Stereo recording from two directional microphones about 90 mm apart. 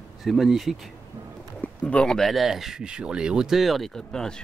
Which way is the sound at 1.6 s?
15° left (ahead or behind).